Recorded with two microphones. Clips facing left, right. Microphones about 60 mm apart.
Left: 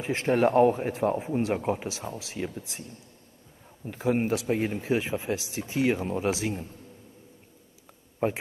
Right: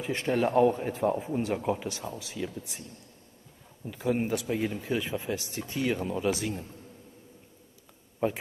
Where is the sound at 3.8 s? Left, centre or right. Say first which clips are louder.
Left 2 dB; left.